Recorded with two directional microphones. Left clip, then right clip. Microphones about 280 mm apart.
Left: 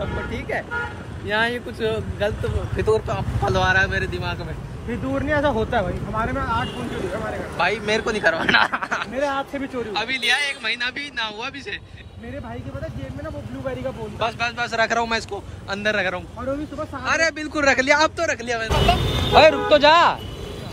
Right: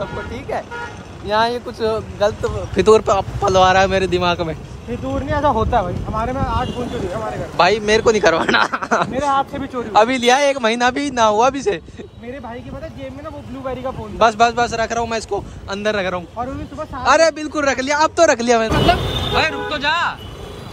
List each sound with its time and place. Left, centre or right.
0.3 s speech: centre
13.7 s speech: right
19.4 s speech: centre